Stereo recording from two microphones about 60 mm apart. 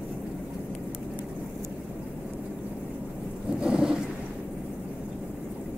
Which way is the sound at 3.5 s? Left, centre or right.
Centre.